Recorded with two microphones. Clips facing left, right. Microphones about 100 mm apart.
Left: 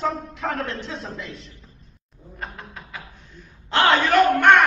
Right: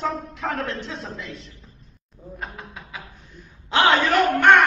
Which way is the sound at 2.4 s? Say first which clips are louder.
Left 1 dB; 5° right (ahead or behind).